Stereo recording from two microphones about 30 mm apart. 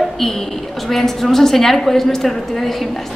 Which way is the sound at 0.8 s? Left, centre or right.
Centre.